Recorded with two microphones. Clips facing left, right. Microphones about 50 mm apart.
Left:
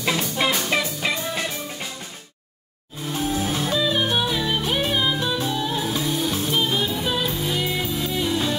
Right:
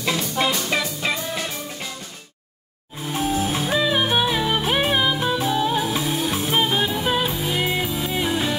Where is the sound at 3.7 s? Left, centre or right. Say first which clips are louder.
Right 3 dB; right.